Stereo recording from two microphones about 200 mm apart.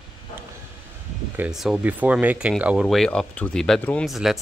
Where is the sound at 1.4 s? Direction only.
Centre (ahead or behind).